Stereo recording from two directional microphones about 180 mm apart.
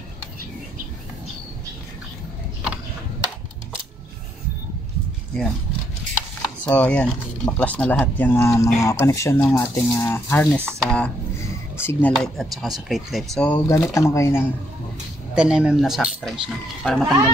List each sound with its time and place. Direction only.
6.4 s speech: 10° left (ahead or behind)
11.3 s a sound: 15° left (ahead or behind)
12.1 s speech: centre (ahead or behind)
13.7 s speech: 15° left (ahead or behind)
15.3 s speech: 5° right (ahead or behind)